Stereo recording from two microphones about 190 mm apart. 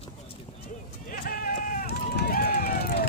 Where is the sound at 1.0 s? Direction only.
50° left (ahead or behind).